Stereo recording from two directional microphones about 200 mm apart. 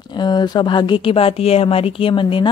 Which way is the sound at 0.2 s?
20° left (ahead or behind).